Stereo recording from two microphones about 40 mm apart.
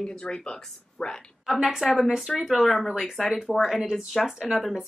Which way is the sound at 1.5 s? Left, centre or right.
Centre.